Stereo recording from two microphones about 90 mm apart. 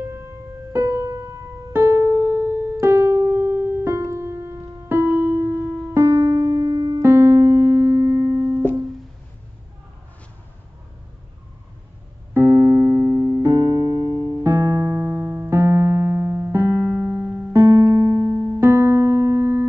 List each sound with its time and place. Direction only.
0.7 s music: 30° right (ahead or behind)
1.7 s keyboard: 25° right (ahead or behind)
12.4 s keyboard: 30° right (ahead or behind)
14.1 s music: 45° left (ahead or behind)
14.4 s keyboard: 30° right (ahead or behind)